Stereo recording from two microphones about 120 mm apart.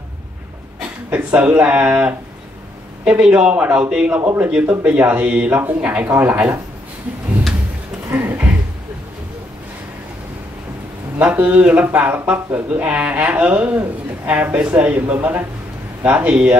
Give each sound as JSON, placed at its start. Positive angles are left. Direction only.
{"t": 1.1, "sound": "speech", "side_deg": -10}
{"t": 8.1, "sound": "a sound", "side_deg": -15}
{"t": 11.1, "sound": "speech", "side_deg": -10}